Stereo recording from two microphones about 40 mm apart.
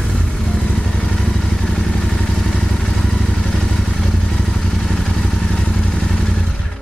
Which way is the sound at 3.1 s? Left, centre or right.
Centre.